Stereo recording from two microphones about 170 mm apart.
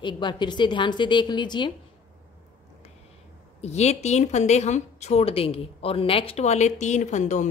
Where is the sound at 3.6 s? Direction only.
40° left (ahead or behind).